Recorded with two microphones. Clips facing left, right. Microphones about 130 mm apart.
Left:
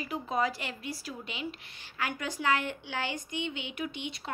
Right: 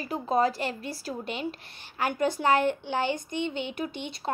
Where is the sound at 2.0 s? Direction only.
50° right (ahead or behind).